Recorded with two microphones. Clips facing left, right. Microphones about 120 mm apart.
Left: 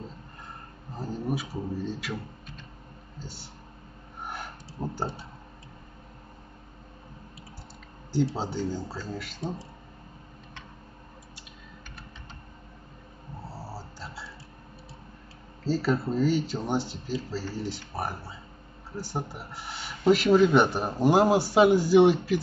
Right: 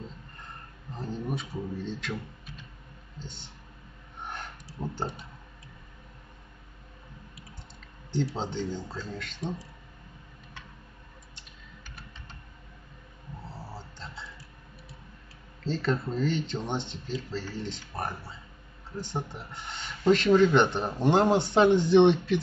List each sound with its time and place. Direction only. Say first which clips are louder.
0.9 s speech: left 3 dB; 5° left (ahead or behind)
3.2 s speech: left 1 dB; 5° left (ahead or behind)
4.2 s a sound: left 1 dB; 5° left (ahead or behind)
8.4 s speech: left 2 dB; 5° left (ahead or behind)
9.4 s speech: right 1 dB; 30° left (ahead or behind)
13.5 s dog: left 3 dB; 5° left (ahead or behind)
15.6 s speech: left 3 dB; 5° left (ahead or behind)